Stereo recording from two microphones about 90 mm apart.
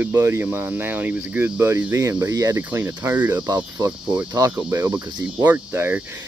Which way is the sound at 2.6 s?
25° right (ahead or behind).